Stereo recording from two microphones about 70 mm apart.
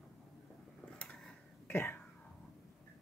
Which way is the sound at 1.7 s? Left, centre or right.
Left.